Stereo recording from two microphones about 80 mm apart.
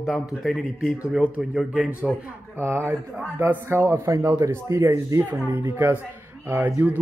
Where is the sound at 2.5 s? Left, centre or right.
Right.